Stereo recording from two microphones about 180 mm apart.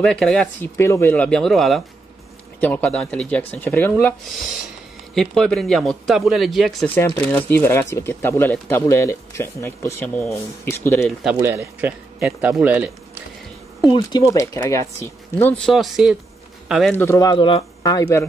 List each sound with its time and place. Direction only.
0.0 s speech: 5° left (ahead or behind)
5.1 s speech: centre (ahead or behind)
7.3 s speech: 10° left (ahead or behind)
11.4 s speech: 15° right (ahead or behind)
13.8 s a man's voice: 25° left (ahead or behind); by 16.9 s 5° right (ahead or behind)
16.9 s speech: 15° left (ahead or behind)